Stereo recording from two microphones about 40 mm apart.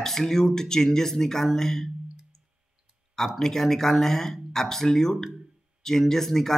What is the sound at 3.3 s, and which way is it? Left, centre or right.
A man's voice, centre.